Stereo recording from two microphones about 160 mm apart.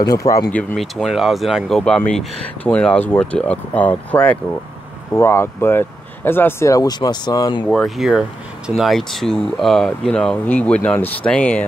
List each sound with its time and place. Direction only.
0.0 s speech: 20° left (ahead or behind)
0.7 s speech: centre (ahead or behind); by 7.6 s 25° left (ahead or behind)
7.6 s speech: 5° left (ahead or behind)